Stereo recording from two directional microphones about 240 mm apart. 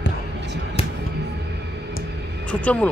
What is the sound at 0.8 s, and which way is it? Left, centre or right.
Music, left.